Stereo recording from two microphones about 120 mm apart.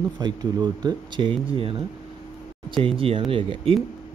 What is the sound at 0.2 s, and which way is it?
A man's voice, 35° right (ahead or behind).